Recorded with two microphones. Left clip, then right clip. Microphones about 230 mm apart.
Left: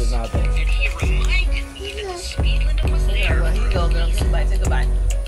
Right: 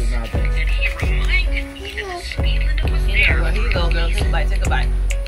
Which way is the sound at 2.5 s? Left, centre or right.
Left.